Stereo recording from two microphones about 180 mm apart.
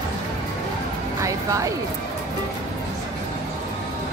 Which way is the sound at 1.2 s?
20° right (ahead or behind).